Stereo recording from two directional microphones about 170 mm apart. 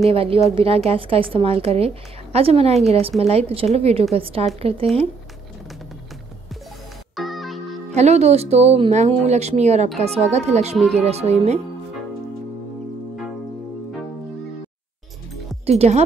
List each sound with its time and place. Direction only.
0.1 s speech: 35° right (ahead or behind)
7.2 s music: centre (ahead or behind)
7.9 s speech: 40° right (ahead or behind)
15.6 s speech: 40° right (ahead or behind)